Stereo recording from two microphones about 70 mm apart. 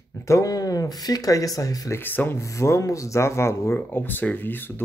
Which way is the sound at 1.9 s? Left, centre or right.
Left.